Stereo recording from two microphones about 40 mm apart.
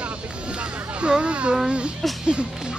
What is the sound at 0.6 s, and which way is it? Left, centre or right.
Speech, right.